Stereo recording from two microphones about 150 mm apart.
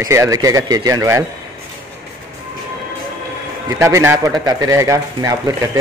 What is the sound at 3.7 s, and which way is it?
A man's voice, 20° right (ahead or behind).